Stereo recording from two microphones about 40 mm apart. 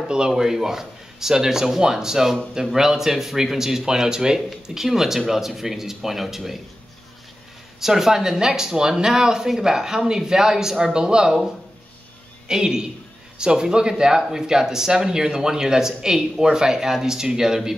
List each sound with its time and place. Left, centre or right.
0.3 s speech: centre
7.8 s speech: centre
12.4 s speech: centre